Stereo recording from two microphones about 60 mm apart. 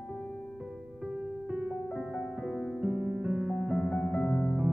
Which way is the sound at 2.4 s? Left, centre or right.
Centre.